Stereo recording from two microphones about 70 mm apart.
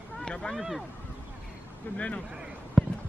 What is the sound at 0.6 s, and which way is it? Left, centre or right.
Speech, centre.